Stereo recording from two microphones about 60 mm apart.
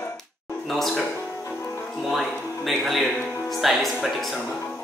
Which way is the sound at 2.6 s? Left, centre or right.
Centre.